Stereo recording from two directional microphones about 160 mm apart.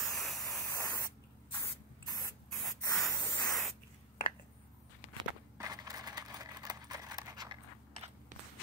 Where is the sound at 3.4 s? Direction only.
Centre (ahead or behind).